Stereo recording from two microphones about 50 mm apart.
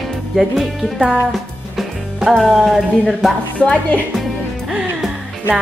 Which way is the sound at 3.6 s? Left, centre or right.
Left.